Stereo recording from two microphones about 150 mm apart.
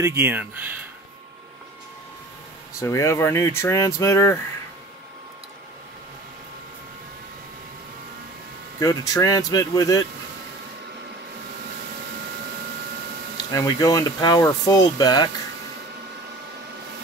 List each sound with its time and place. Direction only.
0.0 s speech: 15° right (ahead or behind)
2.8 s speech: 20° left (ahead or behind)
8.7 s speech: 25° left (ahead or behind)
13.5 s speech: 20° left (ahead or behind)